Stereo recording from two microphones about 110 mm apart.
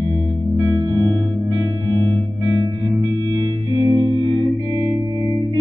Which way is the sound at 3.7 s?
45° right (ahead or behind).